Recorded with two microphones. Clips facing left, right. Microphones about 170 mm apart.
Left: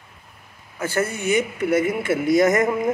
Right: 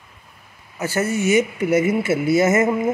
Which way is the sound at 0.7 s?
10° right (ahead or behind).